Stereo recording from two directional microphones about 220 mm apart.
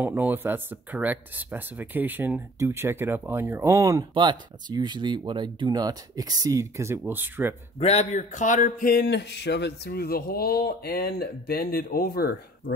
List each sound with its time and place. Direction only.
0.0 s speech: 10° right (ahead or behind)
7.8 s speech: 30° left (ahead or behind)